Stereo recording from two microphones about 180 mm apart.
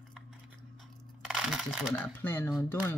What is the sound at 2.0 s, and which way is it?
Speech, 10° left (ahead or behind).